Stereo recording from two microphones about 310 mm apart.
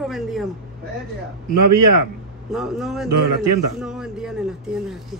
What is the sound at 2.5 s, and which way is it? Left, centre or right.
Speech, centre.